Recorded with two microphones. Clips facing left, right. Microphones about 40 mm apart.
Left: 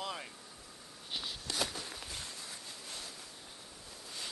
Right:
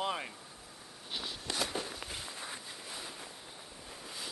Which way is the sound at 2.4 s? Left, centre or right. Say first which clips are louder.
Right 4 dB; right.